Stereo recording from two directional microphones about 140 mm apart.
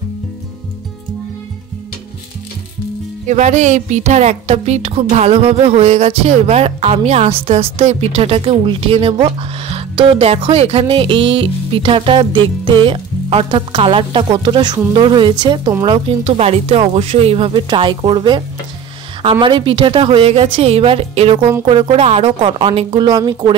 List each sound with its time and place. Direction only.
3.3 s a woman's voice: 60° right (ahead or behind); by 18.4 s 35° right (ahead or behind)
19.4 s speech: 35° right (ahead or behind)